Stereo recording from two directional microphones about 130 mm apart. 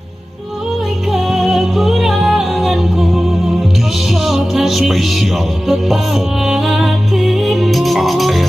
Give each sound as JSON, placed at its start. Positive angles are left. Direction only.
{"t": 1.1, "sound": "music", "side_deg": 0}